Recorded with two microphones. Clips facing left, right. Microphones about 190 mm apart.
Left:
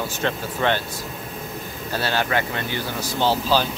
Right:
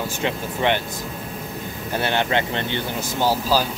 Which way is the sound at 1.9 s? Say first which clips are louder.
Right 1 dB; 20° right (ahead or behind).